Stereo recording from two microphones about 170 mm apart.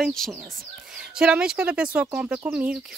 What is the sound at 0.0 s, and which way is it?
Speech, centre (ahead or behind).